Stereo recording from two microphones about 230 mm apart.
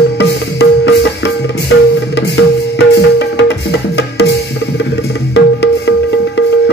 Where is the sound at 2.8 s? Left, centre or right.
Left.